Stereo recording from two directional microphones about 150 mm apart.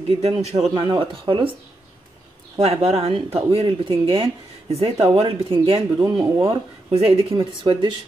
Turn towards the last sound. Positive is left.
turn(degrees=-30)  # may be behind; listen again after turning